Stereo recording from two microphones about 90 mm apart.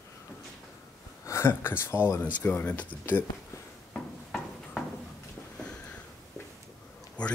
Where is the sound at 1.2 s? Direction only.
30° left (ahead or behind).